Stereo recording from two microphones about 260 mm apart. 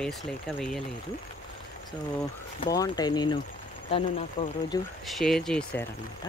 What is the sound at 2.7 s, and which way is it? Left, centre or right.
Speech, centre.